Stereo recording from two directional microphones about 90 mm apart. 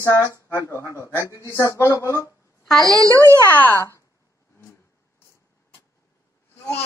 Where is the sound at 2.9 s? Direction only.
40° right (ahead or behind).